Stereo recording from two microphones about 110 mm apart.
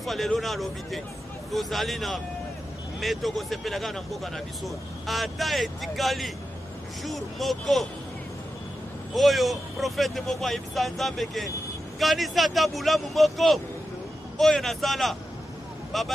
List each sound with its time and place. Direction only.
0.0 s speech: centre (ahead or behind)
9.1 s speech: centre (ahead or behind)